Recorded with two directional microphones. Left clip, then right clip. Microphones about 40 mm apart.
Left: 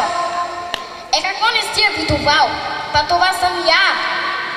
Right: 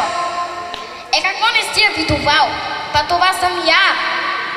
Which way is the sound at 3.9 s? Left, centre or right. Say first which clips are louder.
Right 1 dB; right.